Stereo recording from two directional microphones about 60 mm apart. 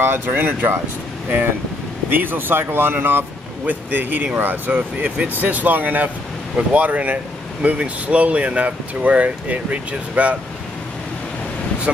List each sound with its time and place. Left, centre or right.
0.0 s speech: right
2.0 s speech: right